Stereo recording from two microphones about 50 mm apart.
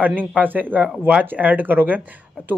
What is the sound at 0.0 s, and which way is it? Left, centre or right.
Speech, right.